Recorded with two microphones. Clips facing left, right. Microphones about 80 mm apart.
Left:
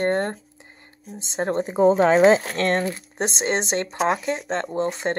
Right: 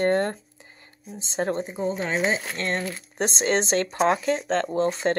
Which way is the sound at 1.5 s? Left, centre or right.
Left.